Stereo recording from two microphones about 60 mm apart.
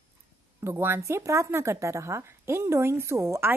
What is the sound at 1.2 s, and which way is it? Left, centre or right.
Speech, right.